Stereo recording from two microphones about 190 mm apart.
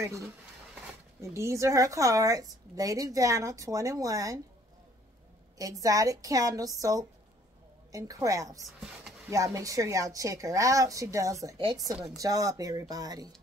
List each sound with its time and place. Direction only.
1.2 s a woman's voice: 15° right (ahead or behind)
5.6 s a woman's voice: 20° right (ahead or behind)
11.9 s speech: centre (ahead or behind)
12.2 s speech: 20° right (ahead or behind)